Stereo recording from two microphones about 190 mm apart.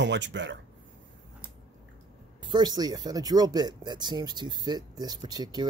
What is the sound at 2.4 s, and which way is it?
Speech, 20° right (ahead or behind).